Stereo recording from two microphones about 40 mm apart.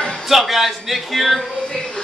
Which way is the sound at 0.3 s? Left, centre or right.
Centre.